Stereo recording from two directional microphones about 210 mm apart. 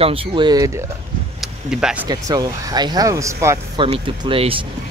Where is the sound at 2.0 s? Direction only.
15° right (ahead or behind).